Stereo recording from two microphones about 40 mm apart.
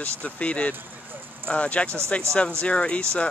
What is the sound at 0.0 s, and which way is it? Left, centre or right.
Speech, left.